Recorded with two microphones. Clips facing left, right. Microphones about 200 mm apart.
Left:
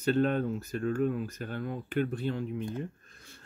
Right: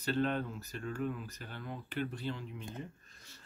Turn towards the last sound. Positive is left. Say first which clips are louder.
# left 5 dB
turn(degrees=55)  # may be behind; listen again after turning